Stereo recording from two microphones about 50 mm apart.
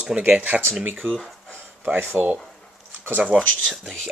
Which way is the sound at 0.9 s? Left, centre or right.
Right.